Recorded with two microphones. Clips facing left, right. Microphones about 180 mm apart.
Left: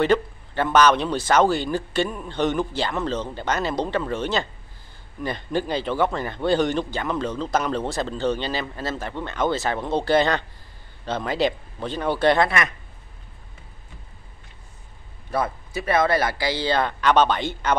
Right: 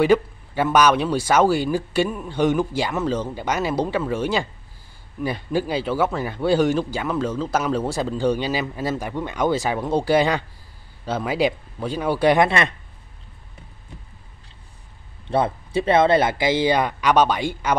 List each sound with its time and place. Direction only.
0.0 s speech: 10° right (ahead or behind)
12.4 s speech: 25° right (ahead or behind)
15.2 s speech: 25° right (ahead or behind); by 17.7 s 10° right (ahead or behind)